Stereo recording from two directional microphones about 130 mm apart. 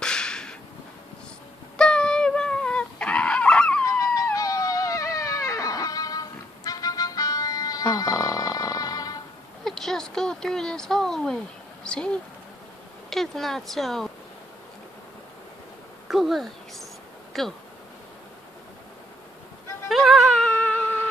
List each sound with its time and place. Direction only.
0.0 s whip: 5° left (ahead or behind)
1.8 s fowl: 5° left (ahead or behind)
3.8 s dog: 25° left (ahead or behind)
9.7 s speech: 5° left (ahead or behind)
16.1 s a sound: centre (ahead or behind)
17.3 s bee: centre (ahead or behind)
19.9 s a sound: centre (ahead or behind)